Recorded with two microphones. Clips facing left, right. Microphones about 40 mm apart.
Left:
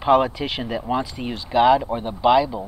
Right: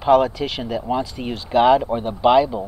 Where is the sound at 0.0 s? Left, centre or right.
Centre.